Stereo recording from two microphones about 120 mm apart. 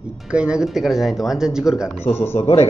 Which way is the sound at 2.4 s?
60° left (ahead or behind).